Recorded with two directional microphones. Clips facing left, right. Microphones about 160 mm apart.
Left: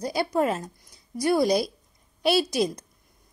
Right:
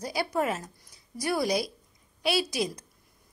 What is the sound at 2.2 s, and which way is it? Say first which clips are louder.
Speech: left 5 dB; centre (ahead or behind).